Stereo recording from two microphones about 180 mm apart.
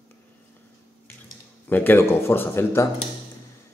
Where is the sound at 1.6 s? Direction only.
10° left (ahead or behind).